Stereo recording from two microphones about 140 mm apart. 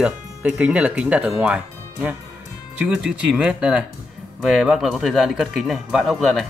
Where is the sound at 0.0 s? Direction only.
10° right (ahead or behind).